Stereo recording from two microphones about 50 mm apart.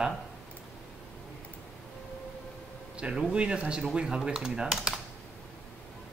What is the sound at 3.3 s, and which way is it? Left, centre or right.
Speech, right.